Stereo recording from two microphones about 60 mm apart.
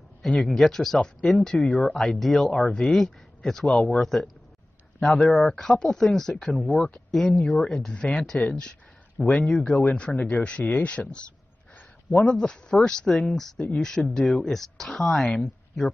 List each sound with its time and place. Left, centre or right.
0.2 s speech: centre
12.3 s speech: centre